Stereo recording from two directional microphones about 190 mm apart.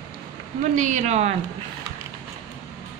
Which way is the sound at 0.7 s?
40° right (ahead or behind).